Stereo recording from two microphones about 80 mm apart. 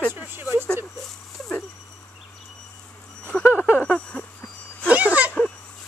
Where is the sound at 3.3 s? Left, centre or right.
Centre.